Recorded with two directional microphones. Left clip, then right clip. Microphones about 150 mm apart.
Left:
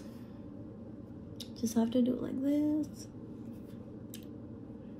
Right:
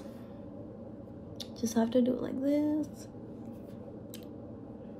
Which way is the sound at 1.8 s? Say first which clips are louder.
Right 5 dB; 30° right (ahead or behind).